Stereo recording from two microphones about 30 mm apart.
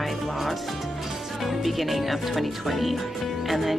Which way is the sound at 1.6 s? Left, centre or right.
Centre.